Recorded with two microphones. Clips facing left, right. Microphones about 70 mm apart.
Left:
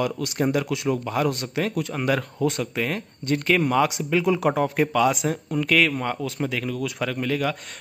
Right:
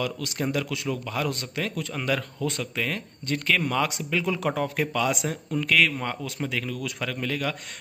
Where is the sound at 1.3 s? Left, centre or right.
Centre.